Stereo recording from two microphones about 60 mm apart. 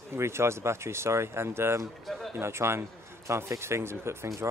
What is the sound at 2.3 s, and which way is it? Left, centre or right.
Speech, right.